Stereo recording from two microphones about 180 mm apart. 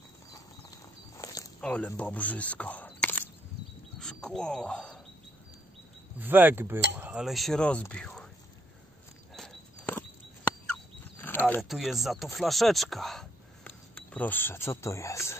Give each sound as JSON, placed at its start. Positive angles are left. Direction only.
{"t": 0.3, "sound": "walk", "side_deg": 20}
{"t": 1.6, "sound": "speech", "side_deg": 5}
{"t": 4.0, "sound": "a sound", "side_deg": 5}
{"t": 6.1, "sound": "speech", "side_deg": -10}
{"t": 9.3, "sound": "a sound", "side_deg": 0}
{"t": 11.1, "sound": "mechanisms", "side_deg": 10}
{"t": 11.7, "sound": "speech", "side_deg": 0}